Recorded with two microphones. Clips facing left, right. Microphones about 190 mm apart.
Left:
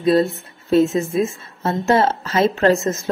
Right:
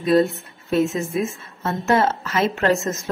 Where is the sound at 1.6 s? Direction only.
30° left (ahead or behind).